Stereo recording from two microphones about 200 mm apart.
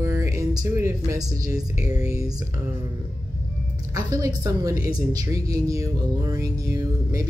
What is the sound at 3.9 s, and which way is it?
Speech, 15° right (ahead or behind).